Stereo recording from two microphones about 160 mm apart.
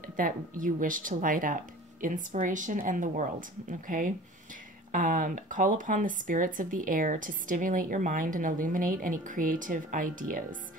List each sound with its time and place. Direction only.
0.0 s speech: 60° right (ahead or behind)